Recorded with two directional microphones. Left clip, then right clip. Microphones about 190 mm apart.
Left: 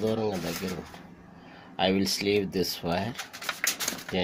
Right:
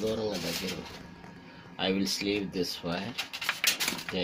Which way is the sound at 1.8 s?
45° left (ahead or behind).